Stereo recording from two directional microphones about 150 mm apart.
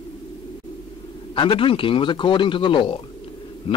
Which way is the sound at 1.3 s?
35° left (ahead or behind).